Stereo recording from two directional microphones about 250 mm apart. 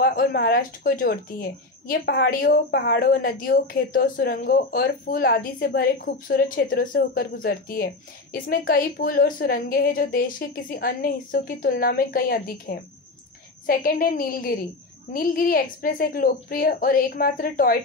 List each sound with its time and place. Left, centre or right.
0.0 s a woman's voice: left